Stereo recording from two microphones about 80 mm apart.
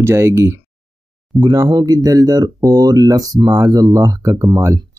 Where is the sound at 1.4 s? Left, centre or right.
Right.